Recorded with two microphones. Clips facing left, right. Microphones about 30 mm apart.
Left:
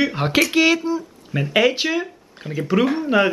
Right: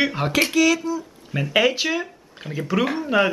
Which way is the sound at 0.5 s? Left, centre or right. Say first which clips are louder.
Left 2 dB; left.